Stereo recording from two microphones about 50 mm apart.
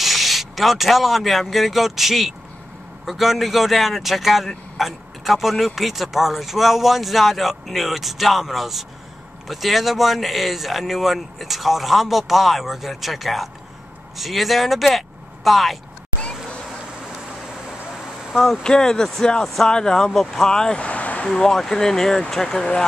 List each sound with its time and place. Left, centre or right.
0.0 s speech: centre
18.3 s speech: centre; by 21.3 s left
21.3 s speech: centre